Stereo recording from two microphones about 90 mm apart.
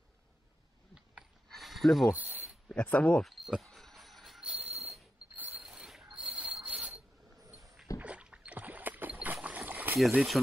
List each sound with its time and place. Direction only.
1.5 s a sound: centre (ahead or behind)
2.1 s speech: 20° right (ahead or behind)
2.7 s speech: 15° left (ahead or behind)
3.3 s cricket: centre (ahead or behind)
4.4 s a sound: 10° right (ahead or behind)
8.0 s rowboat: 15° right (ahead or behind)
9.9 s speech: centre (ahead or behind)